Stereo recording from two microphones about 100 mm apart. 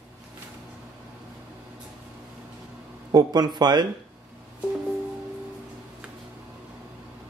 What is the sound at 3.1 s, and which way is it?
Speech, 45° right (ahead or behind).